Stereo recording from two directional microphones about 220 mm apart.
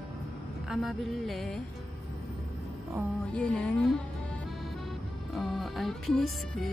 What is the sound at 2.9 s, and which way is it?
Speech, 5° left (ahead or behind).